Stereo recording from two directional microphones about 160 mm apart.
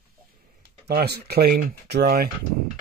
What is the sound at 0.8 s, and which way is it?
Speech, 85° right.